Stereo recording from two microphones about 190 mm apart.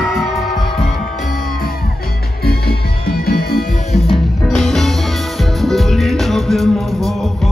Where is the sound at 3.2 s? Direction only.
55° left (ahead or behind).